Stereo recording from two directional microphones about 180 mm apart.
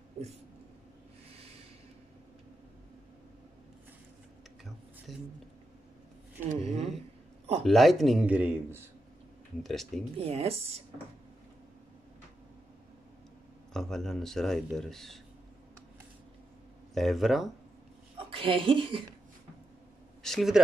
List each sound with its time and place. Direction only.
5.1 s speech: centre (ahead or behind)
6.5 s speech: 40° right (ahead or behind)
7.6 s speech: centre (ahead or behind)
9.6 s speech: centre (ahead or behind)
10.1 s speech: 35° right (ahead or behind)
13.7 s speech: centre (ahead or behind)
16.9 s speech: centre (ahead or behind)
18.3 s a woman's voice: 30° right (ahead or behind)
20.2 s speech: centre (ahead or behind)